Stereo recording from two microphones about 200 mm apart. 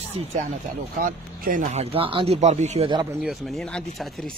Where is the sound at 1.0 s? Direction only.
45° right (ahead or behind).